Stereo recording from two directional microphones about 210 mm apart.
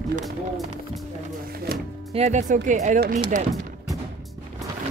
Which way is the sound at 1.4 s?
45° right (ahead or behind).